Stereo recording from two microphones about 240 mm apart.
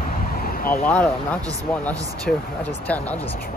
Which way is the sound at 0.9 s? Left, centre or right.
Centre.